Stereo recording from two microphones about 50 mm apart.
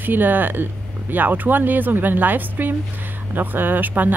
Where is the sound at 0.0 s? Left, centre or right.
Right.